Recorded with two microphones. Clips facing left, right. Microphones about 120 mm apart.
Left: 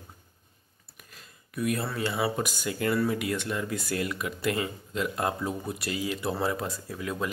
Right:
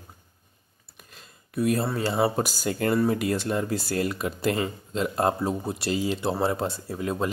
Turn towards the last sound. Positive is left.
turn(degrees=-30)  # may be behind; listen again after turning